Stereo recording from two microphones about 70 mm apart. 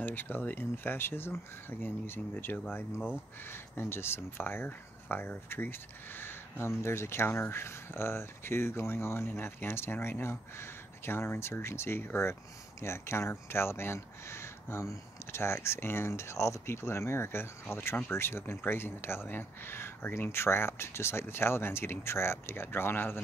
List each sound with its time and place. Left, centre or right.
0.0 s speech: left
3.4 s speech: left